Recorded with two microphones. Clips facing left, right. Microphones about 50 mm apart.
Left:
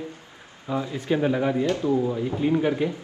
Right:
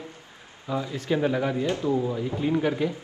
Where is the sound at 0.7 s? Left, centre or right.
Left.